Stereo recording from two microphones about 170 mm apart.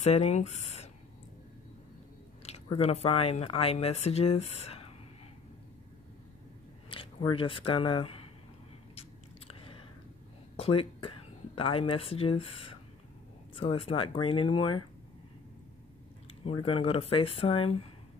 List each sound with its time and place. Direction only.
0.0 s speech: 40° left (ahead or behind)
2.4 s speech: 40° left (ahead or behind)
6.9 s speech: 30° left (ahead or behind)
9.5 s a sound: 35° left (ahead or behind)
10.5 s speech: 35° left (ahead or behind)
16.4 s speech: 30° left (ahead or behind)